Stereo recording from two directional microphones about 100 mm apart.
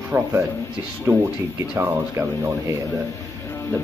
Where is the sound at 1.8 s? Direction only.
30° right (ahead or behind).